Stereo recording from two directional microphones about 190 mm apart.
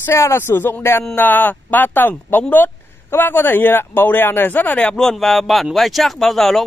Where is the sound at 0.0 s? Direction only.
15° left (ahead or behind).